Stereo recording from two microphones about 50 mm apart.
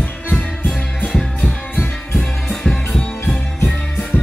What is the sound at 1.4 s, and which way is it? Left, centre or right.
Music, left.